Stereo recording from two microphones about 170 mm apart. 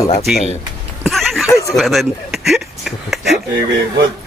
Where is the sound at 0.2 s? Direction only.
Centre (ahead or behind).